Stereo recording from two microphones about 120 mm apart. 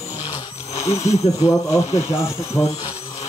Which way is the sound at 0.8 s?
25° left (ahead or behind).